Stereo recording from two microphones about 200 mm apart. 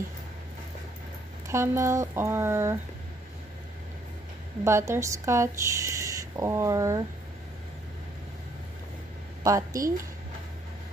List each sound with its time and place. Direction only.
1.5 s speech: 15° right (ahead or behind)
4.6 s speech: 15° right (ahead or behind)
9.4 s speech: 15° right (ahead or behind)